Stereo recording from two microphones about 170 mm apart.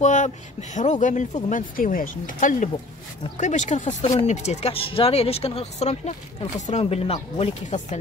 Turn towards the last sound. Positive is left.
turn(degrees=40)  # may be behind; listen again after turning